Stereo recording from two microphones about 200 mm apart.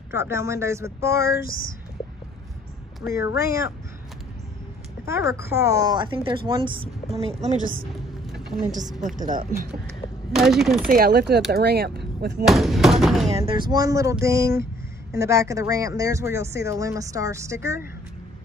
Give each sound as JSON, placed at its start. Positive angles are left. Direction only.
{"t": 0.1, "sound": "speech", "side_deg": -15}
{"t": 1.2, "sound": "a sound", "side_deg": 50}
{"t": 3.3, "sound": "speech", "side_deg": -15}
{"t": 5.0, "sound": "a woman's voice", "side_deg": -15}
{"t": 9.0, "sound": "a woman's voice", "side_deg": -40}
{"t": 10.3, "sound": "chopping", "side_deg": 0}
{"t": 10.9, "sound": "speech", "side_deg": -50}
{"t": 12.4, "sound": "chopping", "side_deg": 0}
{"t": 13.0, "sound": "a sound", "side_deg": 0}
{"t": 13.5, "sound": "a woman's voice", "side_deg": -20}